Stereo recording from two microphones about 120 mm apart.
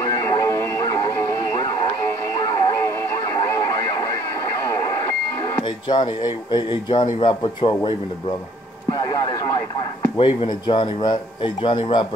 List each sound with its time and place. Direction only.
0.0 s music: 25° left (ahead or behind)
2.7 s radio: 20° left (ahead or behind)
5.6 s speech: 40° left (ahead or behind)
10.1 s speech: 45° left (ahead or behind)